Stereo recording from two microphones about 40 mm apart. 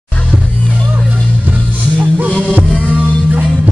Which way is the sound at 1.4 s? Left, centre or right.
Right.